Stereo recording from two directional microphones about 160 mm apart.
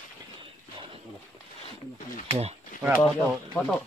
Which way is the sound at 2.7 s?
60° left (ahead or behind).